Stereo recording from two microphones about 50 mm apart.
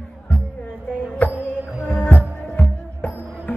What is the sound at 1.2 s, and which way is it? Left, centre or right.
Music, left.